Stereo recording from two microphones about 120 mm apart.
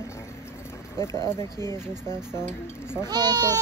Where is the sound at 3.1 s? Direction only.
35° right (ahead or behind).